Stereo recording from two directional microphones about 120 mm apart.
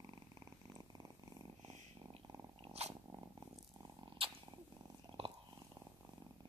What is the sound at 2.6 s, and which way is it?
Cat, 60° right (ahead or behind).